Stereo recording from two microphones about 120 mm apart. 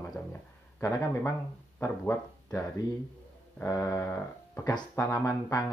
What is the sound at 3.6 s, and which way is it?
Speech, 25° left (ahead or behind).